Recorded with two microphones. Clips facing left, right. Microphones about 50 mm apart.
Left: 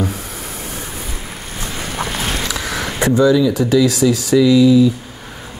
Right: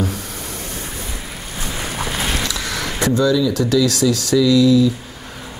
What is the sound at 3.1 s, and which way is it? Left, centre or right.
Speech, centre.